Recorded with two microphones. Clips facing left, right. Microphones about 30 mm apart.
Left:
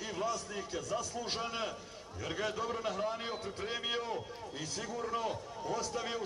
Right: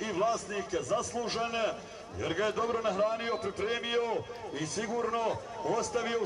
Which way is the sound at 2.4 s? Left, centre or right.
Centre.